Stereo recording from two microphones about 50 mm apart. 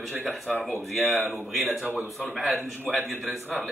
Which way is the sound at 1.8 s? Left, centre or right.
Right.